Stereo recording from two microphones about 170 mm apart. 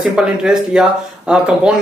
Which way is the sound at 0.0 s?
5° right (ahead or behind).